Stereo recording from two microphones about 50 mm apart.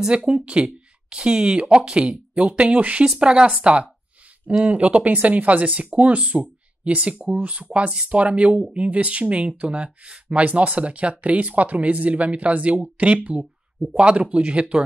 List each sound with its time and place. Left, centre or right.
0.1 s speech: centre